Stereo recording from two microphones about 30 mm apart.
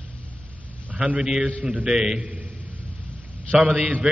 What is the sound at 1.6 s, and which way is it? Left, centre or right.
Speech, right.